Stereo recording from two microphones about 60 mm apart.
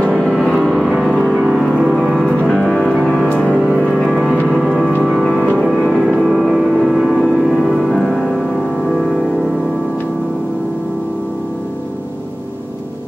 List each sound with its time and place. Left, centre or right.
0.6 s music: centre
1.3 s music: centre
2.4 s music: centre
3.9 s music: centre
5.9 s music: centre
6.2 s music: centre
7.5 s music: centre